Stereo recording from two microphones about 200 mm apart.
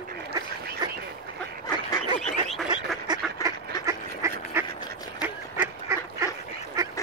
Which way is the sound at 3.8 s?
15° right (ahead or behind).